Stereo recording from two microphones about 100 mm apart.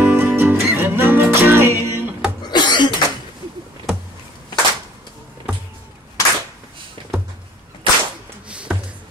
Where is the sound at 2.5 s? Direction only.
50° left (ahead or behind).